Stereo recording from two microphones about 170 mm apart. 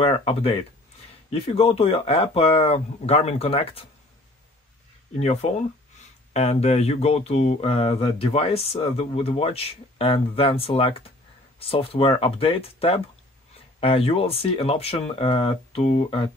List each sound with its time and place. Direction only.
0.0 s speech: 30° left (ahead or behind)
5.2 s speech: 40° left (ahead or behind)